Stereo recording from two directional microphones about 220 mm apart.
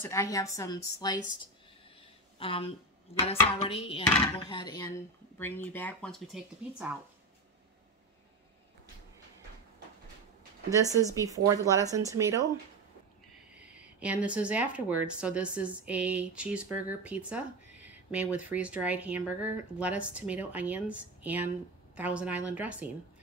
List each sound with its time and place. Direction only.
0.0 s speech: 15° left (ahead or behind)
2.0 s a sound: 25° left (ahead or behind)
3.1 s speech: 25° left (ahead or behind); by 7.0 s 5° right (ahead or behind)
10.7 s speech: 15° right (ahead or behind)
13.5 s speech: 5° right (ahead or behind)